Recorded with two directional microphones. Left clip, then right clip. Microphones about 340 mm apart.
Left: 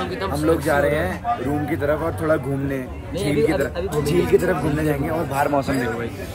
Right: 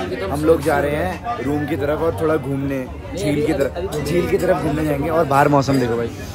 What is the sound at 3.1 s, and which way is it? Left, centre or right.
Speech, centre.